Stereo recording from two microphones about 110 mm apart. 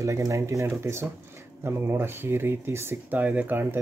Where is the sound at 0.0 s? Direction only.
30° right (ahead or behind).